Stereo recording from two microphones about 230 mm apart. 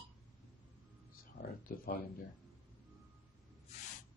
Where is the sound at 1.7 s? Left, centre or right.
Left.